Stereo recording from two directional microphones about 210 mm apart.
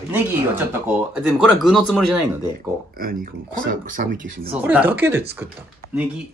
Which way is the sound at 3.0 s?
45° right (ahead or behind).